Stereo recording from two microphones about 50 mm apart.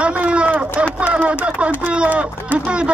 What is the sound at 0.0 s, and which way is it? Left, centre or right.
Run, right.